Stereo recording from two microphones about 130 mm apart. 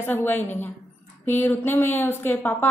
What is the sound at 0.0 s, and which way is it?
A woman's voice, 15° left (ahead or behind).